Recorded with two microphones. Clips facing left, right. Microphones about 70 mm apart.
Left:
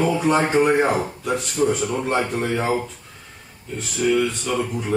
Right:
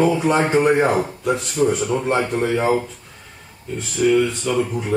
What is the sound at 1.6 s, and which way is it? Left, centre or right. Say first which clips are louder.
Speech: right 1 dB; right.